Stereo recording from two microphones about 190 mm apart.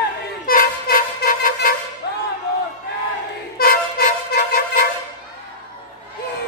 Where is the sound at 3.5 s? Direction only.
50° left (ahead or behind).